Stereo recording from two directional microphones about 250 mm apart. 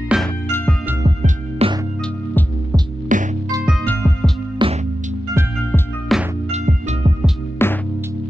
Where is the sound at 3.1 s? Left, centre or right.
Right.